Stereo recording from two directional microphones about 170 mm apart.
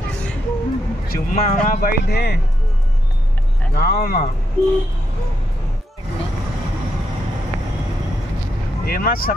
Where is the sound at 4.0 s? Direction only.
55° left (ahead or behind).